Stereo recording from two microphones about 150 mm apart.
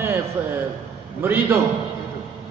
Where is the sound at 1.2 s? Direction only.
15° right (ahead or behind).